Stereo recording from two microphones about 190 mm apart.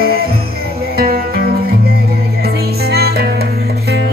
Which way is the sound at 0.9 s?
55° right (ahead or behind).